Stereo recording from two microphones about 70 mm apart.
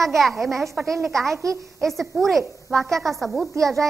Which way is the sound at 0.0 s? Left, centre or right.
Centre.